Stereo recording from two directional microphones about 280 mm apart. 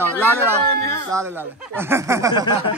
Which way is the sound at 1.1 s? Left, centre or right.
Centre.